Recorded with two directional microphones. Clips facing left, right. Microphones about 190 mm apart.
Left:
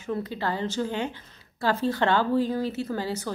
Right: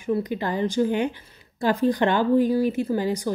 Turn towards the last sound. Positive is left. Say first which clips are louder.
# right 6 dB
turn(degrees=-15)  # may be behind; listen again after turning